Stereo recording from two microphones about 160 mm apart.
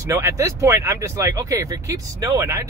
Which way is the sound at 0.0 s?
20° right (ahead or behind).